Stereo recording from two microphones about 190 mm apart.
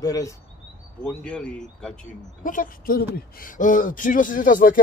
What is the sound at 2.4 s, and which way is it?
A man's voice, 45° left (ahead or behind).